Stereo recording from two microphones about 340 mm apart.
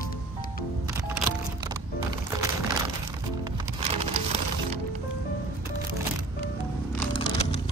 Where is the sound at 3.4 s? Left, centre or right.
Centre.